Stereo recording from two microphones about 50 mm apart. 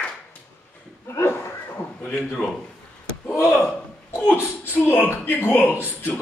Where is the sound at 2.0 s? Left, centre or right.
Centre.